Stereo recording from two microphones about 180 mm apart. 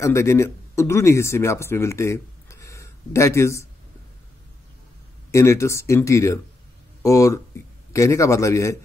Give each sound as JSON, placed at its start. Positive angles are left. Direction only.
{"t": 0.0, "sound": "speech", "side_deg": 15}
{"t": 5.3, "sound": "speech", "side_deg": 15}